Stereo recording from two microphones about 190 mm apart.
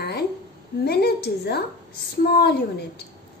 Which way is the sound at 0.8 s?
55° left (ahead or behind).